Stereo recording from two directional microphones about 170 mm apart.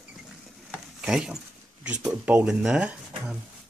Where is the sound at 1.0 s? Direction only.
5° right (ahead or behind).